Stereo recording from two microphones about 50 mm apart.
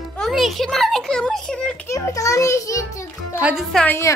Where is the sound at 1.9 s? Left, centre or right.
Left.